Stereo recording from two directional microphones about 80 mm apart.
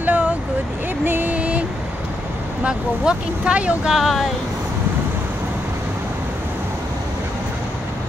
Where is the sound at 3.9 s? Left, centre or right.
Centre.